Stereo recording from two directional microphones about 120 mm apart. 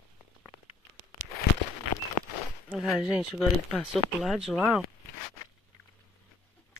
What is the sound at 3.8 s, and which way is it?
Speech, 5° right (ahead or behind).